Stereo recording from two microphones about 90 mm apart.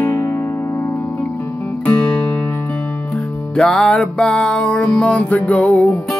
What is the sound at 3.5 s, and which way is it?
Music, 10° left (ahead or behind).